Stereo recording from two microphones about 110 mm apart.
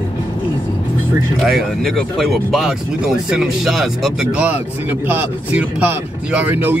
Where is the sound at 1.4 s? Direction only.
Centre (ahead or behind); by 6.8 s 20° right (ahead or behind).